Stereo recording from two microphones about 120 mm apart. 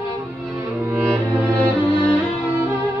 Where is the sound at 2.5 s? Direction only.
20° right (ahead or behind).